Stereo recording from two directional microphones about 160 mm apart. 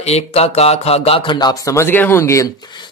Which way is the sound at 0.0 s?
40° left (ahead or behind).